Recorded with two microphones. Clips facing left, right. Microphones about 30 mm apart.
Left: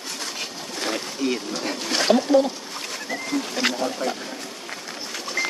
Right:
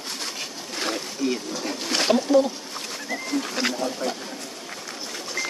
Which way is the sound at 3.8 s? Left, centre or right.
Left.